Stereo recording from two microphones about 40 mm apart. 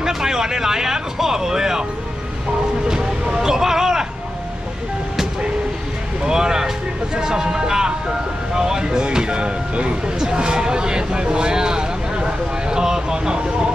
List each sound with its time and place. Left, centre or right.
0.0 s speech: centre
2.9 s speech: centre
6.2 s speech: centre